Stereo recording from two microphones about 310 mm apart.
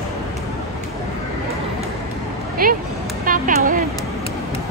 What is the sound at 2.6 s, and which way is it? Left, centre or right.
Speech, right.